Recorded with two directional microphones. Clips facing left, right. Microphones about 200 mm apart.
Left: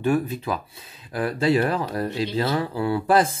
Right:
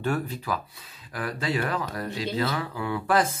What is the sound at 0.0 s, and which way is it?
Speech, 15° left (ahead or behind).